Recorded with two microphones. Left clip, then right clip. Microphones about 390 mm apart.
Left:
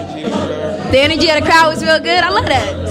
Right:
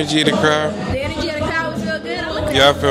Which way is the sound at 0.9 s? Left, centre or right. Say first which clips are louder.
Left 11 dB; left.